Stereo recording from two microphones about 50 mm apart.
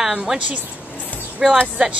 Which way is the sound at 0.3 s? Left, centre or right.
Centre.